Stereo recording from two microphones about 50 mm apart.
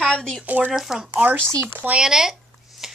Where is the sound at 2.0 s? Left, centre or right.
Centre.